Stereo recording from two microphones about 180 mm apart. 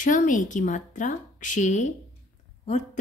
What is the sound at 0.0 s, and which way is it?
A woman's voice, 45° left (ahead or behind).